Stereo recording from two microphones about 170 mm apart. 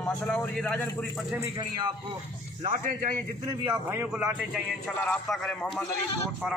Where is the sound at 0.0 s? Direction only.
5° left (ahead or behind).